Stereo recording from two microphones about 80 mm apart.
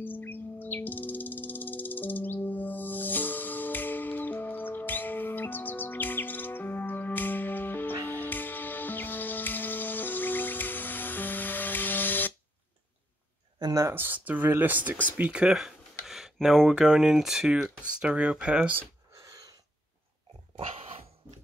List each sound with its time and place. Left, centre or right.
0.0 s music: left
13.9 s speech: right
19.1 s a sound: right